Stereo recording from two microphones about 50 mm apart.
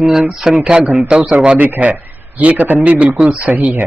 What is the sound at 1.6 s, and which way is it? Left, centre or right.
A man's voice, right.